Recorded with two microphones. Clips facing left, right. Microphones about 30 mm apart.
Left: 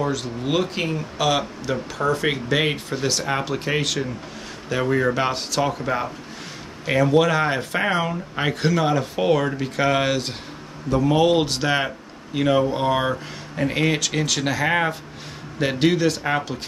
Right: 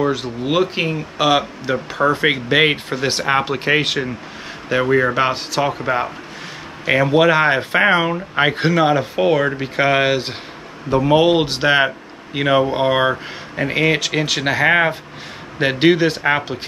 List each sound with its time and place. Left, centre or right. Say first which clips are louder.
0.0 s speech: right 5 dB; right